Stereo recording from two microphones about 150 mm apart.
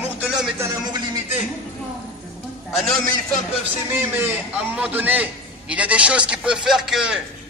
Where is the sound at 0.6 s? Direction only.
25° right (ahead or behind).